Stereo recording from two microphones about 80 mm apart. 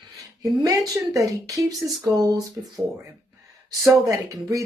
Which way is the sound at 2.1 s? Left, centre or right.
Right.